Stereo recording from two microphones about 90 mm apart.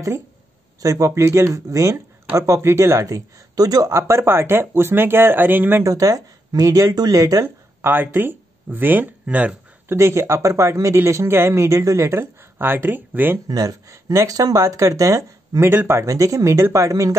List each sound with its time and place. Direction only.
0.8 s speech: 35° right (ahead or behind)
5.9 s speech: 40° right (ahead or behind)
7.4 s speech: 25° right (ahead or behind)
9.8 s speech: 30° right (ahead or behind)
13.5 s speech: 45° right (ahead or behind); by 16.1 s 25° right (ahead or behind)
16.1 s speech: 40° right (ahead or behind)